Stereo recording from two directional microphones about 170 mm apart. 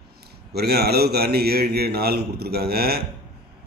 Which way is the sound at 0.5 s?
70° right (ahead or behind).